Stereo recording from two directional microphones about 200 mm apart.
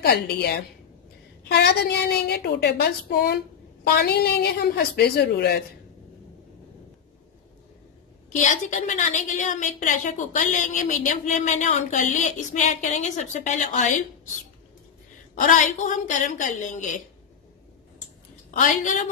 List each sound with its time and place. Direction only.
0.0 s a woman's voice: 50° left (ahead or behind)
8.5 s a woman's voice: 40° left (ahead or behind)
15.3 s a woman's voice: 40° left (ahead or behind)
18.5 s a woman's voice: 40° left (ahead or behind)